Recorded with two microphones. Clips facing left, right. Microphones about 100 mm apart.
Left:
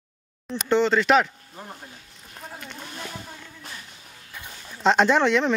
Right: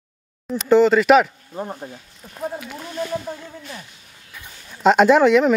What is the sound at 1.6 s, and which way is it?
Speech, 35° right (ahead or behind).